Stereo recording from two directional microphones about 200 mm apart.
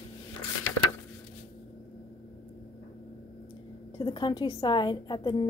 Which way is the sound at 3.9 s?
20° left (ahead or behind).